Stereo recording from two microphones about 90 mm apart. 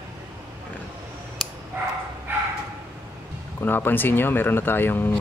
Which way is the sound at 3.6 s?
20° left (ahead or behind).